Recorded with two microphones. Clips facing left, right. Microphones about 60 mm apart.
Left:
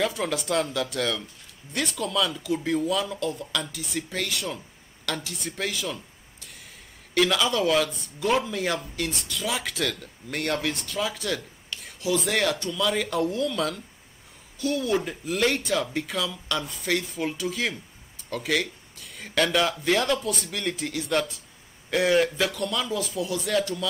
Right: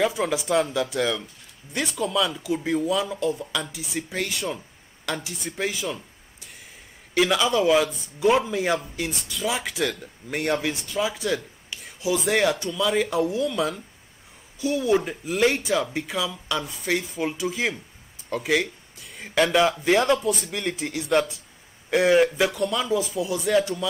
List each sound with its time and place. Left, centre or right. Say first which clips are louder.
0.0 s speech: right 3 dB; centre
5.3 s speech: right 2 dB; centre
7.2 s speech: right 2 dB; centre